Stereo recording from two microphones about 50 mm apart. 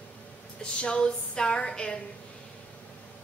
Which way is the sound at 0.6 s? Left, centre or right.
Centre.